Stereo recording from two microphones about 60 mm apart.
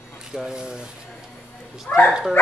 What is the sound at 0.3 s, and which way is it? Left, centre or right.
Speech, centre.